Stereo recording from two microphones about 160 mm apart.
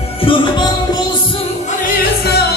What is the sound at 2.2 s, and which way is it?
Music, 90° left.